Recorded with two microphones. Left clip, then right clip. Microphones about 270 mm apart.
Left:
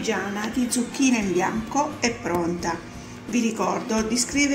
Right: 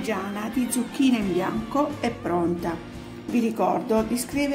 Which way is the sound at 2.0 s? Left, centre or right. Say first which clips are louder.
Left 1 dB; right.